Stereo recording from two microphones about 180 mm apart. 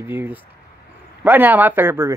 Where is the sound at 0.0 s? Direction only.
10° right (ahead or behind).